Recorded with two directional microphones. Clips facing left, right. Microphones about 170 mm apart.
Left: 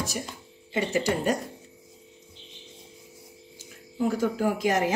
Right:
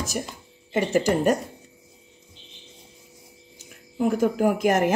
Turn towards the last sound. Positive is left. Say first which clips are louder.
# right 4 dB
turn(degrees=-50)  # may be behind; listen again after turning